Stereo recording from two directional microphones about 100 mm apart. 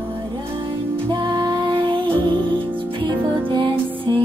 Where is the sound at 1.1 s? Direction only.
50° right (ahead or behind).